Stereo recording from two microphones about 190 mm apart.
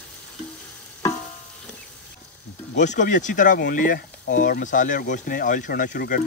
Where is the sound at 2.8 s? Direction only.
40° left (ahead or behind).